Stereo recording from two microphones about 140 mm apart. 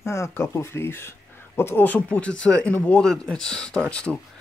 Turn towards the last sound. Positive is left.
turn(degrees=10)  # may be behind; listen again after turning